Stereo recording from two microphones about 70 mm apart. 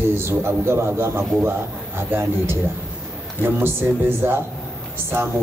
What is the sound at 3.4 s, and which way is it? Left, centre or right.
A man's voice, right.